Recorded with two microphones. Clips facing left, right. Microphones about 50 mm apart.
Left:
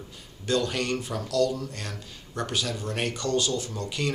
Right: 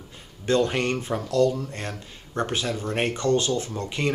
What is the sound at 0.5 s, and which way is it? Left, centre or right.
Speech, right.